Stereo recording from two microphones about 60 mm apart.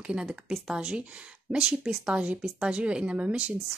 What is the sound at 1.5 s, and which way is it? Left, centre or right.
Speech, centre.